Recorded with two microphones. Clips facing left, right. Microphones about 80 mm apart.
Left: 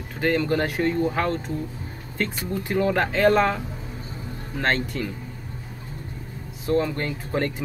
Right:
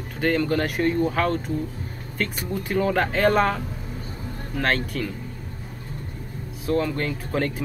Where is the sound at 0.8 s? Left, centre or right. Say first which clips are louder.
Right 1 dB; left.